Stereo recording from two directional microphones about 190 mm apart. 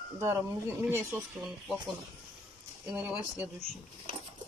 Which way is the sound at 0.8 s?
15° right (ahead or behind).